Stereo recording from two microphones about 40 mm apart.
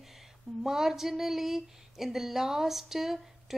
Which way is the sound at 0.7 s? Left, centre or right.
Centre.